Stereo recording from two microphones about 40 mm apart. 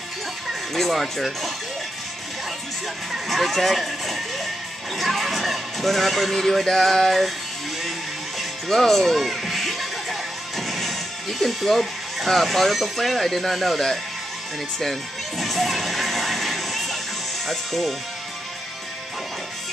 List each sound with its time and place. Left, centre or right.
0.5 s speech: centre
3.1 s speech: centre
8.4 s music: centre
10.7 s speech: centre
14.8 s music: centre
17.5 s speech: centre